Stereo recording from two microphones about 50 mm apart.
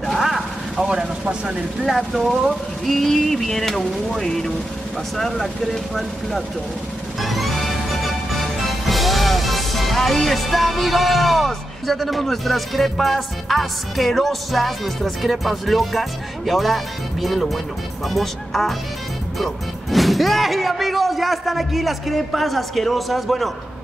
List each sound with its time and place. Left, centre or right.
0.0 s vehicle: centre
1.2 s speech: right
1.8 s speech: centre
7.2 s music: centre
18.0 s speech: centre